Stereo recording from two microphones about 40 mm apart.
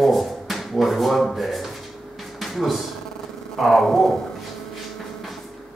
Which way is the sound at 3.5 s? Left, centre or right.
Centre.